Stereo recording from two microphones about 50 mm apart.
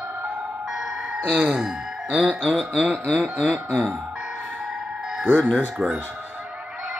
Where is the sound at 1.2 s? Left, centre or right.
Right.